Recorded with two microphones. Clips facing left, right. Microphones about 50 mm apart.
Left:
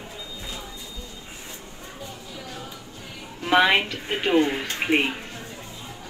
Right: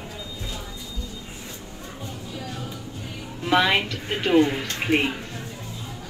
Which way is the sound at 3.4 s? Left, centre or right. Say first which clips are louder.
Left 1 dB; centre.